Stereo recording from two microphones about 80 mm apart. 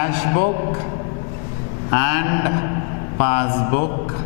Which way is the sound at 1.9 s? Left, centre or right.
Centre.